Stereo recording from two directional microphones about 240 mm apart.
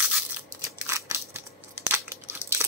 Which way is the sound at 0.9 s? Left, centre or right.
Centre.